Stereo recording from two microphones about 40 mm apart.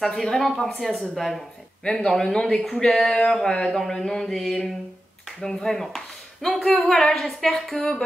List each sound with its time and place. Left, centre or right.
0.0 s speech: centre